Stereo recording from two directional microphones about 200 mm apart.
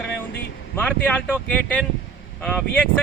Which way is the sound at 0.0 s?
60° left (ahead or behind).